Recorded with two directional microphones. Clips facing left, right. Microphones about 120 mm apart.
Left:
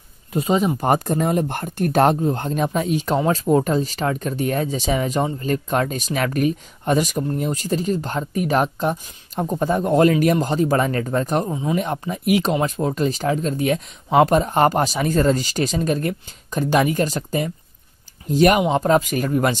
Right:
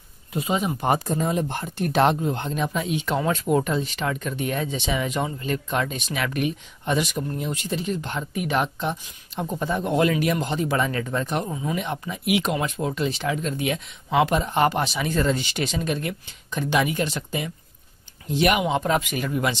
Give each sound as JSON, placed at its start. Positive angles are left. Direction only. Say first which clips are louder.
{"t": 0.3, "sound": "speech", "louder": "left 6 dB", "side_deg": 35}
{"t": 11.7, "sound": "speech", "louder": "left 5 dB", "side_deg": 40}